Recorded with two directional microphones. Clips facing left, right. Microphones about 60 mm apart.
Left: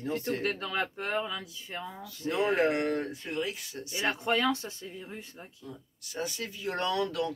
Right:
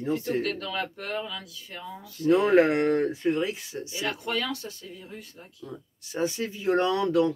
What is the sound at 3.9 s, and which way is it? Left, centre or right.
Speech, left.